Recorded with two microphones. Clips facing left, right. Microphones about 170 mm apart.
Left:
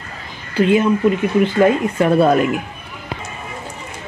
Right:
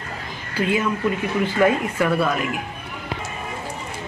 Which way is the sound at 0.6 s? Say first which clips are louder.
Left 8 dB; 20° left (ahead or behind).